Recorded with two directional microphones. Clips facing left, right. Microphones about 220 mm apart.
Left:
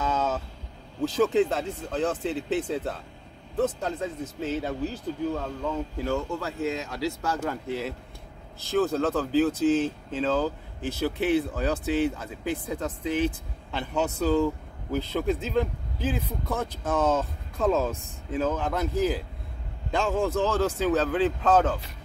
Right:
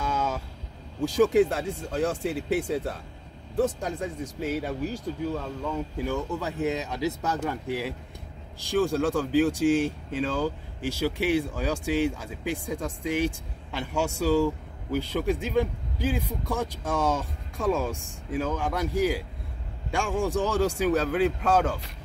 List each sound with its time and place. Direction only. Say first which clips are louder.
0.0 s vehicle: left 2 dB; 10° right (ahead or behind)
1.0 s speech: right 2 dB; 10° right (ahead or behind)